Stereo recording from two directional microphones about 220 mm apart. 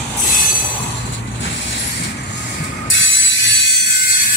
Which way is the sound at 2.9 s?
55° left (ahead or behind).